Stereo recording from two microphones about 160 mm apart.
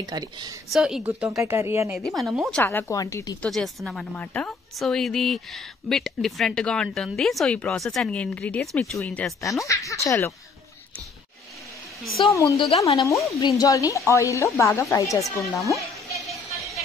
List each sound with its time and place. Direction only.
0.0 s a woman's voice: 25° right (ahead or behind)
0.7 s a woman's voice: 5° right (ahead or behind)
1.4 s speech: 15° right (ahead or behind)
2.0 s a woman's voice: centre (ahead or behind)
2.6 s speech: 15° left (ahead or behind)
3.4 s a woman's voice: centre (ahead or behind)
9.4 s speech: 20° left (ahead or behind)
12.3 s speech: 20° left (ahead or behind)
12.5 s speech: 40° left (ahead or behind)
13.6 s speech: 20° left (ahead or behind)
15.7 s a sound: centre (ahead or behind)